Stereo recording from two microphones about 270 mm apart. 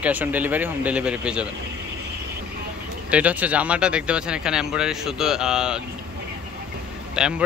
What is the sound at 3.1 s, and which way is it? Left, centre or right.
Speech, centre.